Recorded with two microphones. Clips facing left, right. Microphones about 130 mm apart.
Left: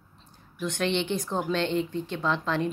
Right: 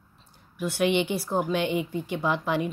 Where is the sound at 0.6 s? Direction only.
10° right (ahead or behind).